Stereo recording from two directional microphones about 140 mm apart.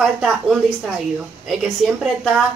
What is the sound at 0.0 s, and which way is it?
A woman's voice, 5° right (ahead or behind).